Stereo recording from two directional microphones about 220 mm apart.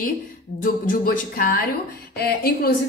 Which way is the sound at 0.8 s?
40° left (ahead or behind).